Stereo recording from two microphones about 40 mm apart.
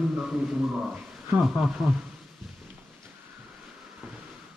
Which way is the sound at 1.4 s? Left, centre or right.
Centre.